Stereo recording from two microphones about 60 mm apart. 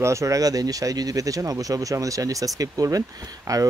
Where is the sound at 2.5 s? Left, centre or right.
Right.